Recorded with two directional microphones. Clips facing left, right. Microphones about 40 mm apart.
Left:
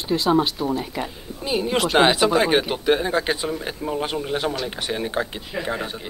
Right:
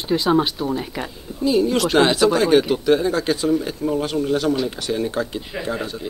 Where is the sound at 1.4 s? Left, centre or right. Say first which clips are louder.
Right 4 dB; left.